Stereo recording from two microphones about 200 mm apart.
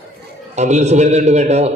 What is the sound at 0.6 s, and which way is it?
A man's voice, 35° right (ahead or behind).